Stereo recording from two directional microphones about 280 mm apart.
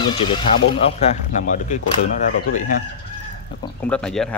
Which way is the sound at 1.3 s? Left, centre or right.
Left.